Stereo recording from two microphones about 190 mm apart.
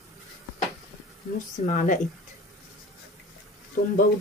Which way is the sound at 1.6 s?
40° left (ahead or behind).